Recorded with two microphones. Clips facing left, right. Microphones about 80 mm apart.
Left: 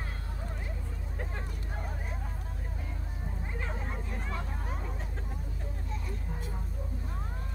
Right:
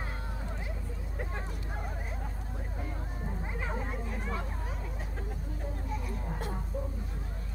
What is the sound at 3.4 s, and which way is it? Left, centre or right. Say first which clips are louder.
Vehicle: right 2 dB; centre.